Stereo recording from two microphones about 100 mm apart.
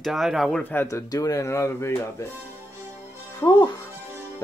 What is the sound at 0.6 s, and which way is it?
Speech, 20° left (ahead or behind).